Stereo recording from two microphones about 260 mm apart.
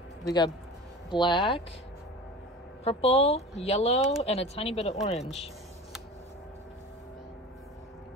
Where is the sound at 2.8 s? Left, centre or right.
Left.